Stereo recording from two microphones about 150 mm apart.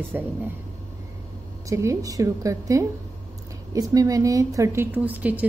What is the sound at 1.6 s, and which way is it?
A woman's voice, 20° right (ahead or behind).